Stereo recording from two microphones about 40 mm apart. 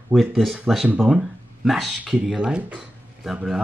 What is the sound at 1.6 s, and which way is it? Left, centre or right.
Speech, centre.